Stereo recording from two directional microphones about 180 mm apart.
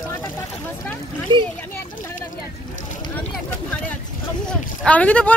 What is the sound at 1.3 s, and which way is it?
Speech, 25° right (ahead or behind).